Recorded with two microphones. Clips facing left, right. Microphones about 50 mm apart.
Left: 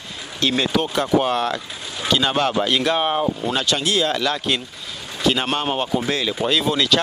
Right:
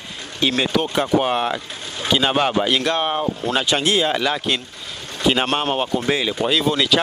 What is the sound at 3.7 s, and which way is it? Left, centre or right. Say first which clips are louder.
Speech: right 2 dB; right.